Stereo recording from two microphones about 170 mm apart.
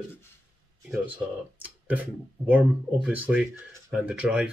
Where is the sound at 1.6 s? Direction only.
10° right (ahead or behind).